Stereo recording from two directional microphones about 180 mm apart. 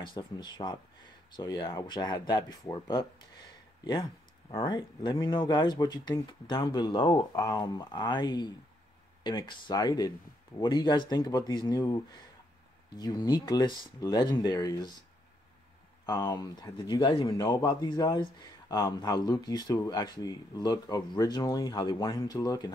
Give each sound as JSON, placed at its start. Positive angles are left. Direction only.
{"t": 0.0, "sound": "speech", "side_deg": 25}
{"t": 4.5, "sound": "speech", "side_deg": 25}
{"t": 16.1, "sound": "speech", "side_deg": 20}